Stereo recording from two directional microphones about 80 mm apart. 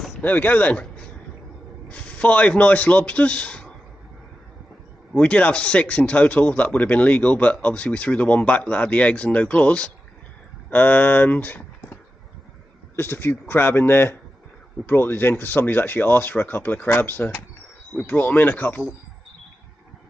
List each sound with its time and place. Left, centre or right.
0.2 s speech: left
1.9 s a man's voice: centre
5.1 s speech: centre